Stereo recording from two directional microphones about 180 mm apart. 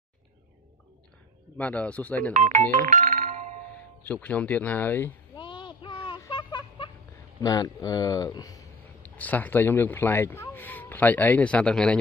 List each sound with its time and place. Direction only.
1.6 s speech: 10° left (ahead or behind)
2.3 s speech: 40° right (ahead or behind)
2.7 s music: 45° right (ahead or behind)
4.0 s speech: 10° left (ahead or behind)
5.3 s a sound: 25° left (ahead or behind)
7.4 s speech: 20° left (ahead or behind)
9.1 s speech: 10° left (ahead or behind)